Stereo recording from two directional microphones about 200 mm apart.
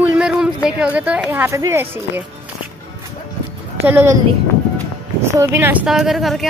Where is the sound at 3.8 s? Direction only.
10° right (ahead or behind).